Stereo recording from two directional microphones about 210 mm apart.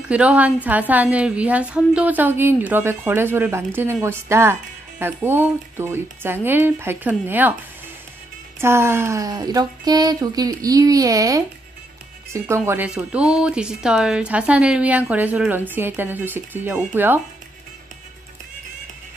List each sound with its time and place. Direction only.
0.1 s a woman's voice: 5° right (ahead or behind)
8.5 s a woman's voice: 10° right (ahead or behind)